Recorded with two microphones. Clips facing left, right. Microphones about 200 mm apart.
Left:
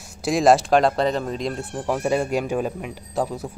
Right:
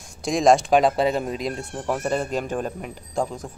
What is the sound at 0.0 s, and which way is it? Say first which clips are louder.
A man's voice: left 1 dB; 5° left (ahead or behind).